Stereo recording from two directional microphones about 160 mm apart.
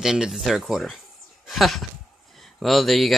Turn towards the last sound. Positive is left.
turn(degrees=0)  # may be behind; listen again after turning